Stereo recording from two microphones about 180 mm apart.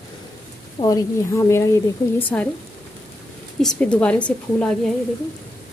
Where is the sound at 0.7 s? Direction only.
20° left (ahead or behind).